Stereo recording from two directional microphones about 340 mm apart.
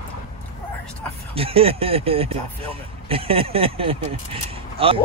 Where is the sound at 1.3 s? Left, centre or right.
Centre.